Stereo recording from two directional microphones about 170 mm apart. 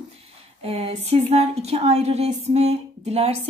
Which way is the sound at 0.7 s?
35° right (ahead or behind).